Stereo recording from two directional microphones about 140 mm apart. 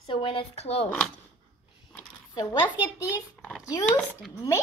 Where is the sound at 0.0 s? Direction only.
40° left (ahead or behind).